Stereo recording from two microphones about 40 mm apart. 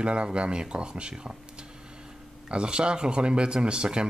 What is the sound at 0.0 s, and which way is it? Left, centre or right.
Speech, right.